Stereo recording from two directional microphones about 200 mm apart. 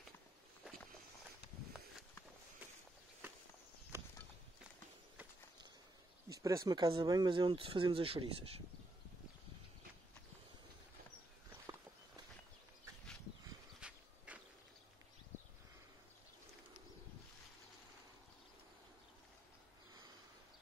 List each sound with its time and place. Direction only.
3.9 s a sound: 15° right (ahead or behind)
6.2 s speech: 15° right (ahead or behind)
13.7 s dog: 5° right (ahead or behind)